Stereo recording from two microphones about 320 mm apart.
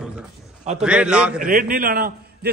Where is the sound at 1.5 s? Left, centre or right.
Right.